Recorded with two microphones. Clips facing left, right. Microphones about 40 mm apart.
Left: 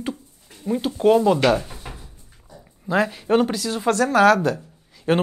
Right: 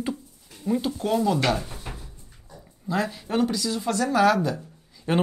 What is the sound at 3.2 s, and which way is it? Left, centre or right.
Speech, left.